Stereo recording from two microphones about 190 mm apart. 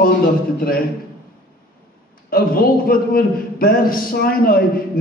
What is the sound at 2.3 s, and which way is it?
A man's voice, 50° left (ahead or behind).